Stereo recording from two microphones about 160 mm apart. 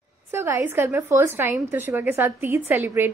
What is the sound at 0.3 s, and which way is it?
A woman's voice, 15° right (ahead or behind).